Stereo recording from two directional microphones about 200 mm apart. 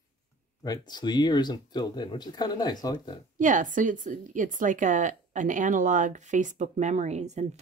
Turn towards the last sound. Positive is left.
turn(degrees=-35)  # may be behind; listen again after turning